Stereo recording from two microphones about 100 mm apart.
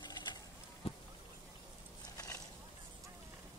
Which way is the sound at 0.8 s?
75° left (ahead or behind).